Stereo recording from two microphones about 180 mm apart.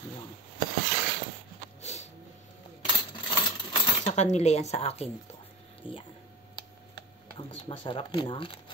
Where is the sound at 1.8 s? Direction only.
40° left (ahead or behind).